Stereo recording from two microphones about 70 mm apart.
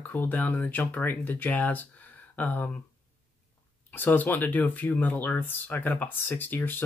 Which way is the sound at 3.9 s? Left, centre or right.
Left.